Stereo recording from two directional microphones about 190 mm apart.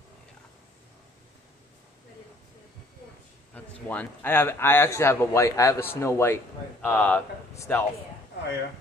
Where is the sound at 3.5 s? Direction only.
10° left (ahead or behind).